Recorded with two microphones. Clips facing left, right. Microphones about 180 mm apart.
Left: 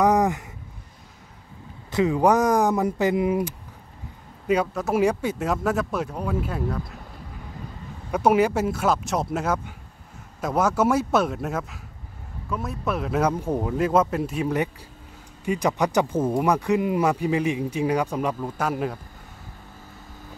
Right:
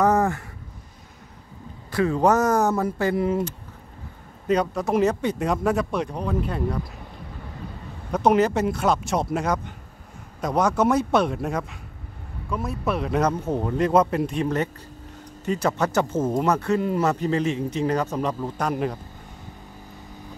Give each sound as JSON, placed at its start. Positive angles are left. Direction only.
{"t": 0.0, "sound": "a sound", "side_deg": 15}
{"t": 1.9, "sound": "speech", "side_deg": 20}
{"t": 8.1, "sound": "speech", "side_deg": 10}